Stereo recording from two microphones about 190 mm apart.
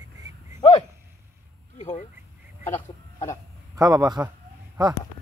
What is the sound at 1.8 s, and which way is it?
Quack, 40° left (ahead or behind).